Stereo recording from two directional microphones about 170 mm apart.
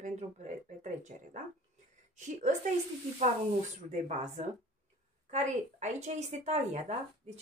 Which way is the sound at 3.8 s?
40° right (ahead or behind).